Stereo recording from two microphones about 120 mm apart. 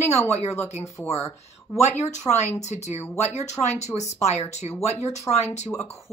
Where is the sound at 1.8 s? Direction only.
65° left (ahead or behind).